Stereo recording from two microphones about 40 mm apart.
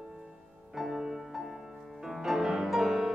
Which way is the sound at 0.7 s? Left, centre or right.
Centre.